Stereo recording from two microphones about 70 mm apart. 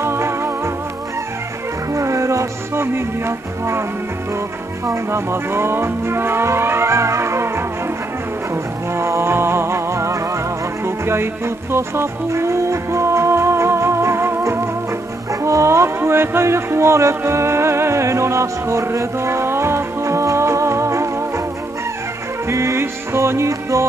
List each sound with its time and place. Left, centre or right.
0.0 s music: right
2.0 s music: right
4.8 s speech: right
8.9 s music: right
15.4 s music: right
22.5 s music: right